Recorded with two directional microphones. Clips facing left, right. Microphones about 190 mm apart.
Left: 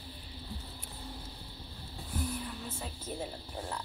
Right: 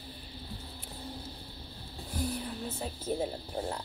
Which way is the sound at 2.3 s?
40° right (ahead or behind).